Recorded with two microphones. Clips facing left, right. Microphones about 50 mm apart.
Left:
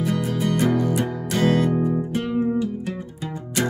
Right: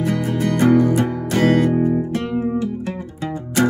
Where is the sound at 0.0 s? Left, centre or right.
Right.